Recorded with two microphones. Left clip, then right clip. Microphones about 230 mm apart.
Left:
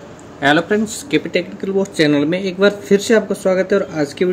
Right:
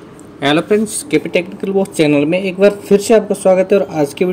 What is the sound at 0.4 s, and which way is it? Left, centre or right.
Speech, centre.